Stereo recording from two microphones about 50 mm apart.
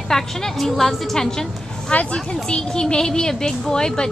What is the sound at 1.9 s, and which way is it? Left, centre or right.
Speech, left.